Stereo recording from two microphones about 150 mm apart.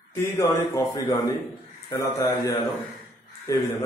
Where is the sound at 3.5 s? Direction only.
20° left (ahead or behind).